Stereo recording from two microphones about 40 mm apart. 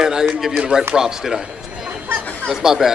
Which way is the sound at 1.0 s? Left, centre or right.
Centre.